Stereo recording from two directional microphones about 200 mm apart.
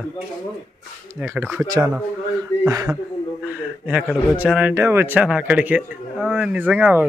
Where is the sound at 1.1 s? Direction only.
10° right (ahead or behind).